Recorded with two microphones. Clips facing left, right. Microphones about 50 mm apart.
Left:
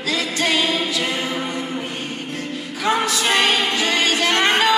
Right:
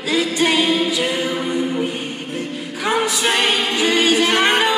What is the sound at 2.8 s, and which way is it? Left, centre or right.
Music, centre.